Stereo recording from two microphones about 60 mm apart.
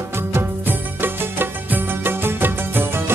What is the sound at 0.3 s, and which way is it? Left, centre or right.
Music, right.